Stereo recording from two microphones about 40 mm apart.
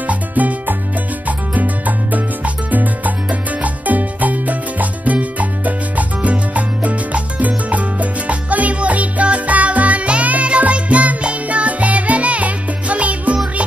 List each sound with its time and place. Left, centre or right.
0.0 s music: right